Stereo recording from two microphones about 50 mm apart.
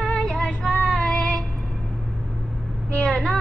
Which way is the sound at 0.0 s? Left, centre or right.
Centre.